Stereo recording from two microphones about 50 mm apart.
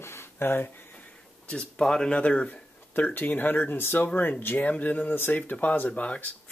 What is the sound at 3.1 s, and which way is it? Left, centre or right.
Speech, left.